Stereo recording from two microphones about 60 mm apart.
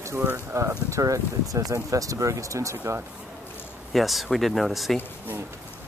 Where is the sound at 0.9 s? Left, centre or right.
Right.